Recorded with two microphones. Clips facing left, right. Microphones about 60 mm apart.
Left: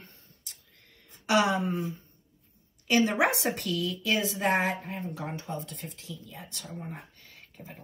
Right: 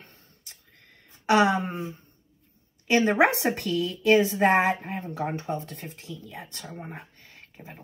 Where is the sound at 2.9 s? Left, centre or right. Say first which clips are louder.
Right 4 dB; right.